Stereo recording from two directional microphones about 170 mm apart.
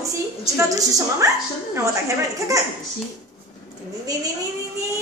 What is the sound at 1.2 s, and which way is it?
Speech, 20° right (ahead or behind).